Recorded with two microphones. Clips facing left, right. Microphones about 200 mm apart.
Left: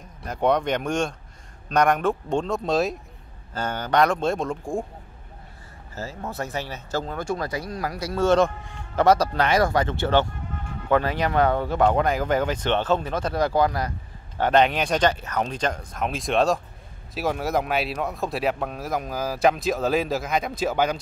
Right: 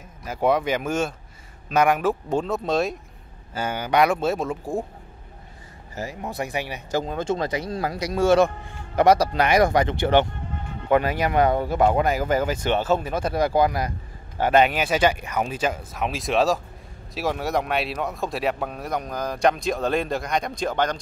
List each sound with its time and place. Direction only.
0.2 s speech: 5° right (ahead or behind)
5.9 s speech: 15° right (ahead or behind); by 21.0 s 5° left (ahead or behind)